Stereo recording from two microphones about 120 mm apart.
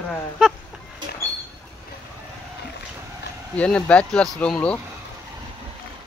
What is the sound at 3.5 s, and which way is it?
Speech, 10° left (ahead or behind).